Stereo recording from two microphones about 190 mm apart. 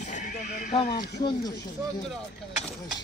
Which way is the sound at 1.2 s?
25° left (ahead or behind).